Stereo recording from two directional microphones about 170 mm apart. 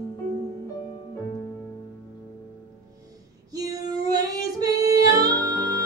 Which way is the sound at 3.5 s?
20° right (ahead or behind).